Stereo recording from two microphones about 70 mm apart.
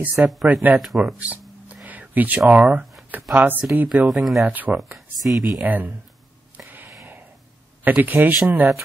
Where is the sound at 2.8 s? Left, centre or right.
Centre.